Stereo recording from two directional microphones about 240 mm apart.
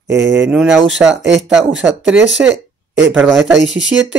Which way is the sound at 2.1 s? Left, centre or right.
Right.